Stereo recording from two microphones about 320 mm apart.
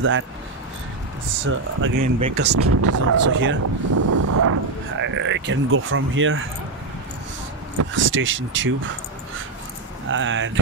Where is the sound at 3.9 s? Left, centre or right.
Right.